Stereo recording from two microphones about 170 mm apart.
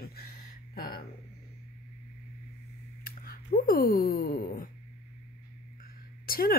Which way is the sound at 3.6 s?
60° left (ahead or behind).